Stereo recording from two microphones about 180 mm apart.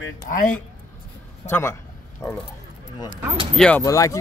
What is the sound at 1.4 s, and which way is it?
Speech, 10° left (ahead or behind).